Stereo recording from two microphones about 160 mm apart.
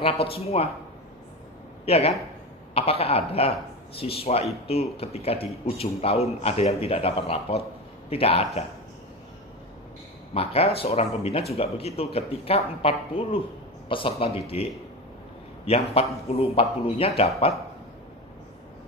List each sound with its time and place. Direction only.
0.0 s speech: 35° left (ahead or behind)
1.9 s speech: 40° left (ahead or behind)
10.3 s speech: 40° left (ahead or behind)